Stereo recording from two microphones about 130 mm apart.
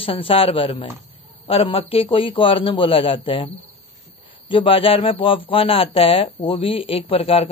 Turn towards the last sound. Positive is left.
turn(degrees=45)  # may be behind; listen again after turning